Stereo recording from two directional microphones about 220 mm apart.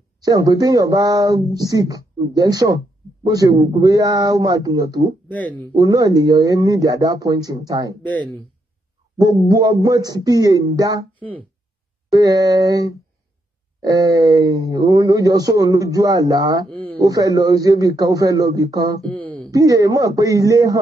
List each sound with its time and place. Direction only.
0.2 s speech: 15° right (ahead or behind)
5.3 s speech: 5° left (ahead or behind)
5.8 s speech: 15° right (ahead or behind)
9.2 s speech: 15° right (ahead or behind)
11.1 s speech: 5° left (ahead or behind)
12.1 s speech: 15° right (ahead or behind)
19.1 s a sound: 5° left (ahead or behind)
19.5 s speech: 15° right (ahead or behind)